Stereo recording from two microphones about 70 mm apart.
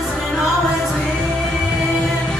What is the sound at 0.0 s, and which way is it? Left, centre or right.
Music, centre.